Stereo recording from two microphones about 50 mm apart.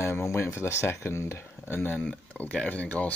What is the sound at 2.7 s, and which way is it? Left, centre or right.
Speech, left.